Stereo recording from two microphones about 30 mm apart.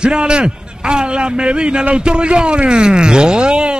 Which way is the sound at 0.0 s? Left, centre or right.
Right.